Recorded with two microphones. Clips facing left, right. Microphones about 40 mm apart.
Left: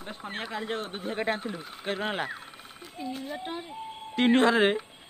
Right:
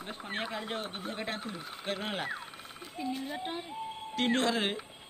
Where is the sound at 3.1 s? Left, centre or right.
Centre.